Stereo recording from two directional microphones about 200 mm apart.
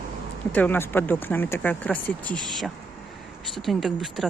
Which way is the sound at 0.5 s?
10° left (ahead or behind).